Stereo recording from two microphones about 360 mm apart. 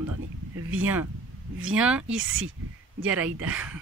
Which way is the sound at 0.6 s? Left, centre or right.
Right.